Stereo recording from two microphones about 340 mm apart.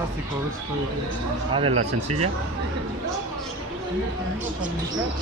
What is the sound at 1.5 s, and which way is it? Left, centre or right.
Speech, centre.